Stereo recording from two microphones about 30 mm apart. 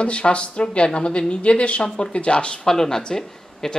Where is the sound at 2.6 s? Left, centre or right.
Centre.